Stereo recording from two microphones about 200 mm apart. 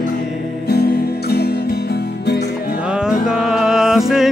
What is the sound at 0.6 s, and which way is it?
Music, 55° left (ahead or behind).